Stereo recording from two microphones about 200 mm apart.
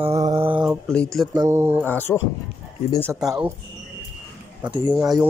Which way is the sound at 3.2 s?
5° right (ahead or behind).